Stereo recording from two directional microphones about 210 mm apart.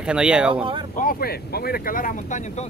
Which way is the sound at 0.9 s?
45° left (ahead or behind).